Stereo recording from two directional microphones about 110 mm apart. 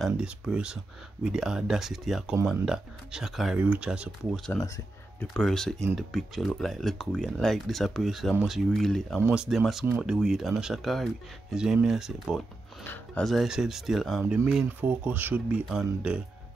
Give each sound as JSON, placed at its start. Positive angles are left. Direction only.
{"t": 0.0, "sound": "speech", "side_deg": -5}
{"t": 4.6, "sound": "speech", "side_deg": 30}
{"t": 5.3, "sound": "speech", "side_deg": 5}
{"t": 12.8, "sound": "speech", "side_deg": 20}
{"t": 13.2, "sound": "speech", "side_deg": 0}
{"t": 15.7, "sound": "speech", "side_deg": -5}